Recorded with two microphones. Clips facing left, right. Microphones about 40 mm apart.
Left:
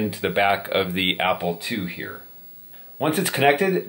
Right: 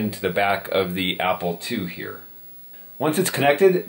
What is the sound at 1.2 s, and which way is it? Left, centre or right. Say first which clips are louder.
Speech: even; centre.